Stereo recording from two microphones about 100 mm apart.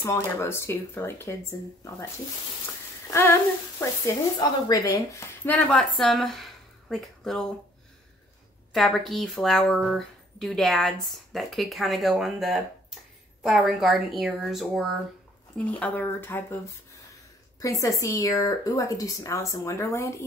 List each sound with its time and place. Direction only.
0.1 s speech: 25° left (ahead or behind)
3.1 s a sound: 30° left (ahead or behind)
4.0 s a woman's voice: 35° left (ahead or behind)
5.7 s a woman's voice: 5° left (ahead or behind)
8.7 s speech: centre (ahead or behind)
15.5 s speech: 15° left (ahead or behind)
17.6 s a woman's voice: 35° left (ahead or behind)